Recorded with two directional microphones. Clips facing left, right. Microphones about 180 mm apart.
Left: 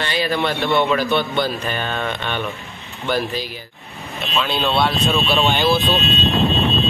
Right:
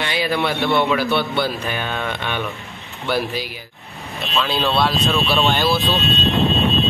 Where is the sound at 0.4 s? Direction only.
Centre (ahead or behind).